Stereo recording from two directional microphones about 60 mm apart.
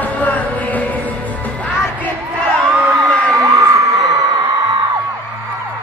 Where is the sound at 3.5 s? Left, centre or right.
Right.